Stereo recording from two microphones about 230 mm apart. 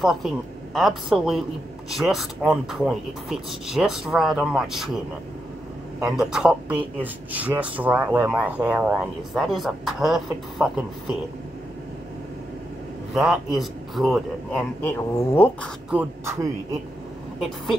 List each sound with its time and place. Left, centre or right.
0.0 s a man's voice: centre
5.9 s speech: centre
13.1 s speech: centre
15.9 s a sound: centre